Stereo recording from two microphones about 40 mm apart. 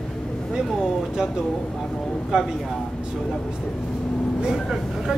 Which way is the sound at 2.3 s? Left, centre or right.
Centre.